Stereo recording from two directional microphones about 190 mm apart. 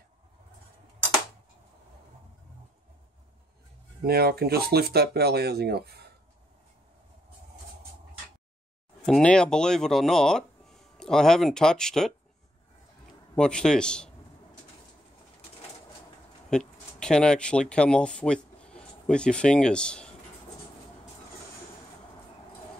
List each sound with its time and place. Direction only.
4.0 s speech: 55° right (ahead or behind)
9.0 s speech: 5° left (ahead or behind)
13.4 s a man's voice: 5° left (ahead or behind)
16.4 s speech: 5° left (ahead or behind)